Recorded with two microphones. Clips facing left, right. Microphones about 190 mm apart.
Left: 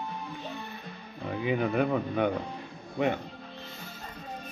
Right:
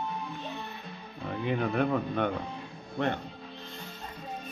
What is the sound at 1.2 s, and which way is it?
Speech, 5° left (ahead or behind).